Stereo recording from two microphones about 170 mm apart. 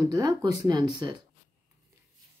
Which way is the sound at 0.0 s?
20° right (ahead or behind).